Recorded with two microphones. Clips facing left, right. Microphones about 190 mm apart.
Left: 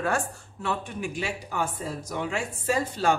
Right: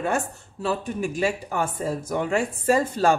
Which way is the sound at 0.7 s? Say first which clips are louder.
Right 4 dB; 45° right (ahead or behind).